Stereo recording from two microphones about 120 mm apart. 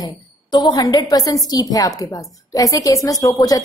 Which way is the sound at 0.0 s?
35° left (ahead or behind).